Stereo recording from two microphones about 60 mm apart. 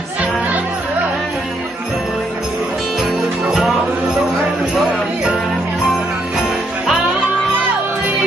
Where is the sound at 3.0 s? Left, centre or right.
Centre.